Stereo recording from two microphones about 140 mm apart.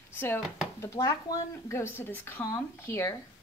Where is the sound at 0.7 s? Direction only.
25° left (ahead or behind).